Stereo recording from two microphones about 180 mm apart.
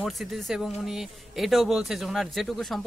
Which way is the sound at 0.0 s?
Centre (ahead or behind).